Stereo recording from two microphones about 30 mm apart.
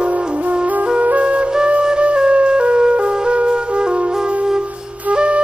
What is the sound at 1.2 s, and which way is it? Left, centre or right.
Flute, right.